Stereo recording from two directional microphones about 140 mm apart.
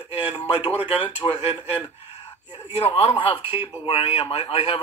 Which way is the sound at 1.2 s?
35° left (ahead or behind).